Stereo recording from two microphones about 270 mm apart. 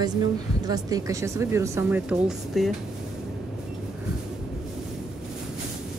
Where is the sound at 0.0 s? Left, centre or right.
Centre.